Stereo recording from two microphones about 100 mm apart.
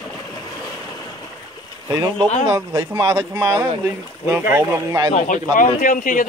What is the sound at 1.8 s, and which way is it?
Speech, 30° right (ahead or behind).